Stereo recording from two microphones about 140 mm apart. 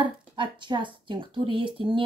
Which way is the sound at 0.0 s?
35° right (ahead or behind).